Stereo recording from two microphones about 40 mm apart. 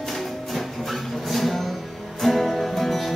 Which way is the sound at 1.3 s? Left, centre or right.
Centre.